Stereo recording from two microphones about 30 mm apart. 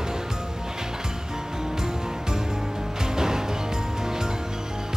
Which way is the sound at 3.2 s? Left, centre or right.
Centre.